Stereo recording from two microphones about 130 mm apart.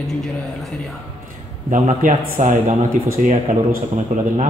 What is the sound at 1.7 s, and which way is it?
Speech, 80° right.